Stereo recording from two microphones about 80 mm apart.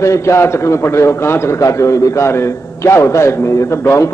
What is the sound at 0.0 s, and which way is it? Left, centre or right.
A man's voice, left.